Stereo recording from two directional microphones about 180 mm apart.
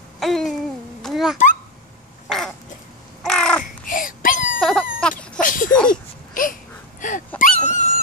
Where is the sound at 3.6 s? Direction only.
50° left (ahead or behind).